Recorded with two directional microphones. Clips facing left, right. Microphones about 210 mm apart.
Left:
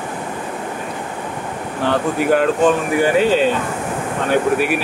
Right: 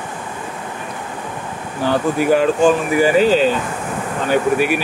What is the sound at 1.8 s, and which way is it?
Speech, centre (ahead or behind).